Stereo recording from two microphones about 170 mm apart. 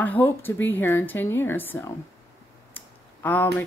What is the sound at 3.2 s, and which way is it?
Speech, 10° left (ahead or behind).